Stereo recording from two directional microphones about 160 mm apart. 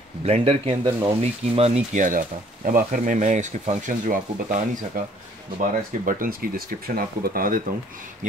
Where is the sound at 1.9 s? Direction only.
55° right (ahead or behind).